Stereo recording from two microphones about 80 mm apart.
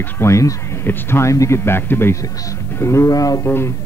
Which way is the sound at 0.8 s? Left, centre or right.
Left.